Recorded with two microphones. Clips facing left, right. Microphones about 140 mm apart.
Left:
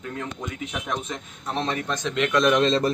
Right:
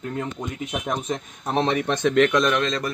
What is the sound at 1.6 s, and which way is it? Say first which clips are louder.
Speech: right 5 dB; 65° right (ahead or behind).